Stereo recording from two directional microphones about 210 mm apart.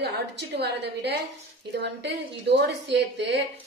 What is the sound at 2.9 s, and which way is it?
Speech, 55° right (ahead or behind).